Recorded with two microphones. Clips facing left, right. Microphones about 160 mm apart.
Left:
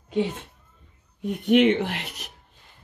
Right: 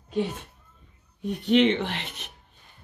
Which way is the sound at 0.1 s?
70° left (ahead or behind).